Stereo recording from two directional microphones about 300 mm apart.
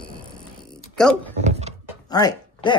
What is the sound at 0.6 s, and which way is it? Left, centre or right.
Purr, centre.